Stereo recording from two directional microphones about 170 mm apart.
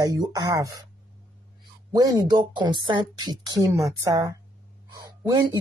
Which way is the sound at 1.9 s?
20° right (ahead or behind).